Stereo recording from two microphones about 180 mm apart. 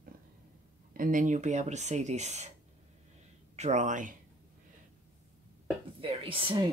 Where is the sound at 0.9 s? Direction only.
50° right (ahead or behind).